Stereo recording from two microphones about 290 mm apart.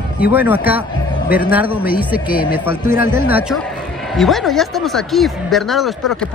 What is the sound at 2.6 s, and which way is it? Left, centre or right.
A man's voice, centre.